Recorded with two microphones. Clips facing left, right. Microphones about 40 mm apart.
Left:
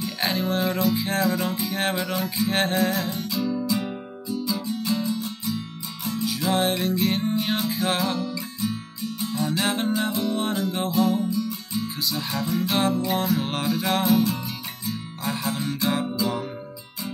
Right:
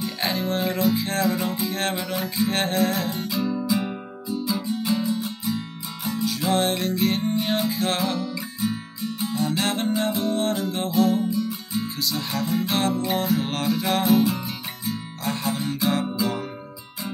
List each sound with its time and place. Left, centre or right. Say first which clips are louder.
0.0 s music: even; centre
6.2 s music: right 1 dB; centre
8.5 s music: right 4 dB; centre
9.3 s music: even; centre
11.2 s music: right 1 dB; centre
12.0 s music: right 1 dB; centre